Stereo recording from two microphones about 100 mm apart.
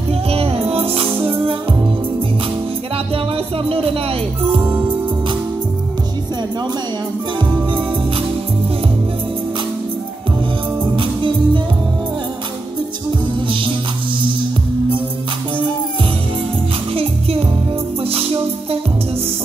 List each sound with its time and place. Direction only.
0.1 s music: 75° right (ahead or behind)
1.2 s music: 55° right (ahead or behind)
3.5 s music: 70° right (ahead or behind)
10.8 s music: 55° right (ahead or behind)
13.5 s music: 60° right (ahead or behind)
16.9 s music: 70° right (ahead or behind)